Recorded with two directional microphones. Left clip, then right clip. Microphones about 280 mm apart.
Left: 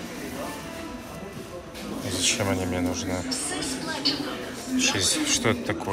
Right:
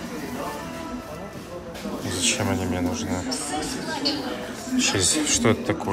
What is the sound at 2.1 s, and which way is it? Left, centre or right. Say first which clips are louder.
A man's voice: even; centre.